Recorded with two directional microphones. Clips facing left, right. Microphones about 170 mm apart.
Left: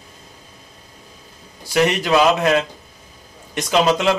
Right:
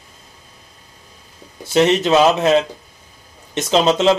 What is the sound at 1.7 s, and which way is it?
Speech, 25° right (ahead or behind).